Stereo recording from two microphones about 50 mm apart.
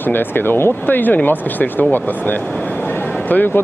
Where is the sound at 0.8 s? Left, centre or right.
Left.